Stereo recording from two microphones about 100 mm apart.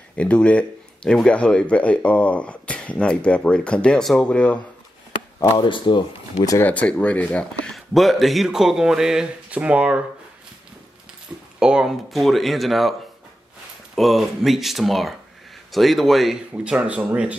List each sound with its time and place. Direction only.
0.1 s speech: 10° left (ahead or behind)
5.6 s speech: 50° left (ahead or behind)
6.6 s speech: 15° left (ahead or behind)
7.7 s speech: centre (ahead or behind)
11.3 s speech: 15° right (ahead or behind)
13.9 s speech: centre (ahead or behind)
16.5 s speech: 10° right (ahead or behind)